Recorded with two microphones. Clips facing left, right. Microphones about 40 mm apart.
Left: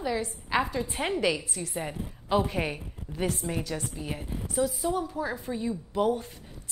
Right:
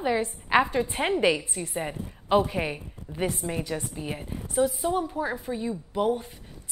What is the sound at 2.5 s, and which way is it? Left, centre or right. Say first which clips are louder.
Speech: right 1 dB; centre.